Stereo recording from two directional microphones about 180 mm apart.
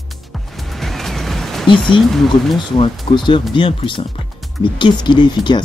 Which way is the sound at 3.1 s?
30° left (ahead or behind).